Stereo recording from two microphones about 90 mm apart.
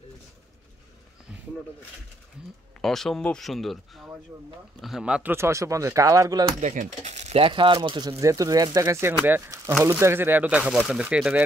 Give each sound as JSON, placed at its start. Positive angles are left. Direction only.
{"t": 2.8, "sound": "speech", "side_deg": 5}
{"t": 5.2, "sound": "speech", "side_deg": -30}
{"t": 7.3, "sound": "speech", "side_deg": -70}
{"t": 8.2, "sound": "speech", "side_deg": -40}
{"t": 10.6, "sound": "speech", "side_deg": -5}